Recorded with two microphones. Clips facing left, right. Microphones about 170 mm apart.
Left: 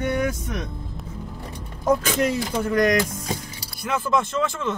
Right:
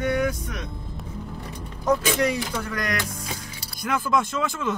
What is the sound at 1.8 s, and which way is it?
Speech, 25° left (ahead or behind).